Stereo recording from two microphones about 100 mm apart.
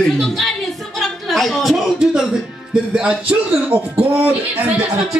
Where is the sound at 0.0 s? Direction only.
5° left (ahead or behind).